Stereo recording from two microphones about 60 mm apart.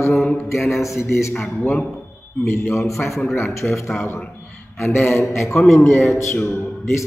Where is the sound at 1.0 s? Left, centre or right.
Left.